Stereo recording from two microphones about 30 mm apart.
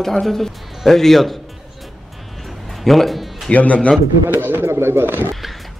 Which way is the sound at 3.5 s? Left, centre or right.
Left.